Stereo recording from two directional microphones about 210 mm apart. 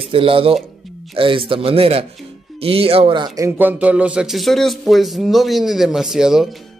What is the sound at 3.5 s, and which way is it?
A man's voice, 10° right (ahead or behind).